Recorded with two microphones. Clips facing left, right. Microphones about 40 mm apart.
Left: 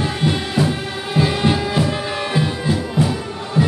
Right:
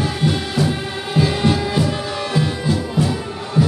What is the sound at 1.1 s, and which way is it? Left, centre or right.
Music, centre.